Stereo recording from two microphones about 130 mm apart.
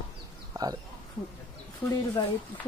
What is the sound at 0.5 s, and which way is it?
Speech, 30° right (ahead or behind).